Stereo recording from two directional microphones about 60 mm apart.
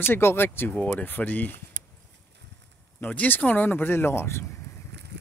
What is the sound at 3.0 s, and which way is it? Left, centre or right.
Speech, left.